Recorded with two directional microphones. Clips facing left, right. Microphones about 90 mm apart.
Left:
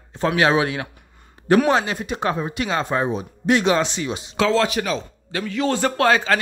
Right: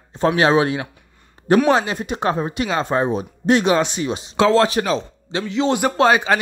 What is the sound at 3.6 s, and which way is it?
Speech, 15° right (ahead or behind).